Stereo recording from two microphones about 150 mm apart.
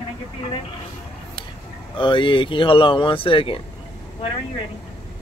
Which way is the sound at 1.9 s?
35° left (ahead or behind).